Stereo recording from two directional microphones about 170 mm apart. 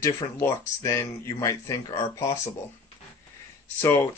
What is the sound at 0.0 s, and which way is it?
Speech, 20° left (ahead or behind).